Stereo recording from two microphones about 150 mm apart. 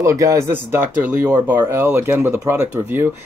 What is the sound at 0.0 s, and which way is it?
Speech, 20° right (ahead or behind).